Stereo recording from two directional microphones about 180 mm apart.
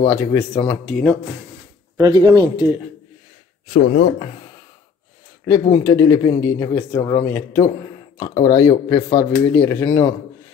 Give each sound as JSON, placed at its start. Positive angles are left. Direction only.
{"t": 0.0, "sound": "speech", "side_deg": 10}
{"t": 2.0, "sound": "speech", "side_deg": -20}
{"t": 5.4, "sound": "speech", "side_deg": 20}